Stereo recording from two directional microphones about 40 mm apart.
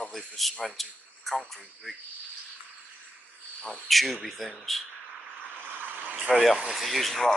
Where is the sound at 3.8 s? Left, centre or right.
Centre.